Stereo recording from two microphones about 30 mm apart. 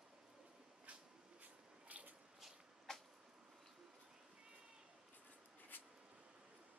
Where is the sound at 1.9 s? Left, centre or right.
Right.